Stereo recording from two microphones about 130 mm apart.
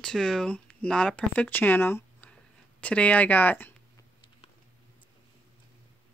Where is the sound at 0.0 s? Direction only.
5° left (ahead or behind).